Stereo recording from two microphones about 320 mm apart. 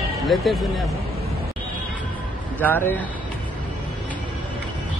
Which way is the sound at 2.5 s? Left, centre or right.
Centre.